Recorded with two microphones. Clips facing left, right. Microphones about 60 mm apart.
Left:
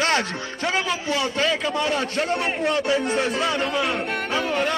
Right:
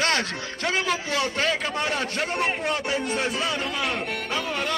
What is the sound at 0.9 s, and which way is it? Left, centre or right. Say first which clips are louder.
Speech: left 1 dB; right.